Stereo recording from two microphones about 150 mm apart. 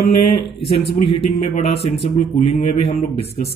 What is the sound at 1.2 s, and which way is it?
Speech, 45° left (ahead or behind).